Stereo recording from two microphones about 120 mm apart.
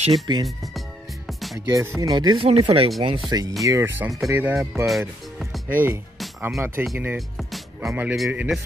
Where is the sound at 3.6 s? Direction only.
25° right (ahead or behind).